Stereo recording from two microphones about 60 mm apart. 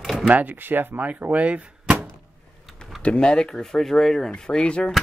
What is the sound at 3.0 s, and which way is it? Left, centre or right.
Speech, centre.